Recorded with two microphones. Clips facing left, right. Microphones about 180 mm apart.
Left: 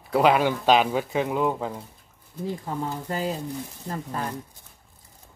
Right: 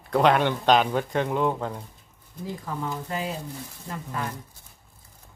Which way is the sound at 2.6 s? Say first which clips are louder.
Left 2 dB; 35° left (ahead or behind).